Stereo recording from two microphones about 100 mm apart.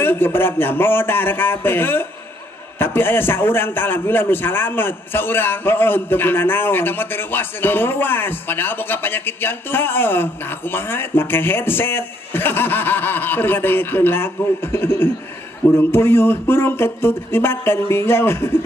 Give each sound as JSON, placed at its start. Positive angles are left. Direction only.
{"t": 0.0, "sound": "a man's voice", "side_deg": 20}